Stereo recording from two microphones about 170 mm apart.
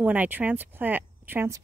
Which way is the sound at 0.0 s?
10° right (ahead or behind).